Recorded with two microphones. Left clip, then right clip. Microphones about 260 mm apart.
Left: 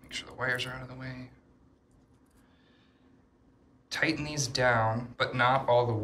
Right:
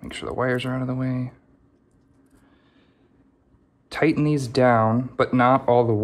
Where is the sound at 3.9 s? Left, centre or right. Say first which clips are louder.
Right 9 dB; centre.